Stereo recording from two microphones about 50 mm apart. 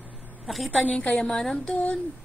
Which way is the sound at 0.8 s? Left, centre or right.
Left.